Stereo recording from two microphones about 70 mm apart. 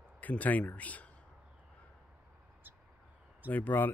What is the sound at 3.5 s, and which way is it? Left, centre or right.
Speech, left.